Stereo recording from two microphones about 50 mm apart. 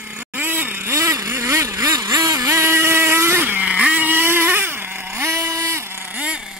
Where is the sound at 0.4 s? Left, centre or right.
Right.